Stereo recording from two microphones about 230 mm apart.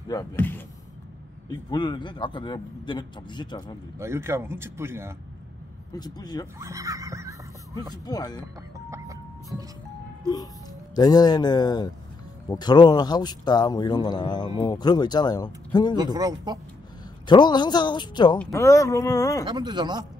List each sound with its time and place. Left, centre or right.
0.1 s a man's voice: centre
4.0 s a man's voice: centre
5.9 s speech: centre
6.6 s speech: centre
7.9 s speech: centre
8.9 s music: centre
9.5 s a man's voice: centre
10.2 s speech: centre
16.0 s a man's voice: centre
17.3 s a man's voice: centre
19.4 s speech: centre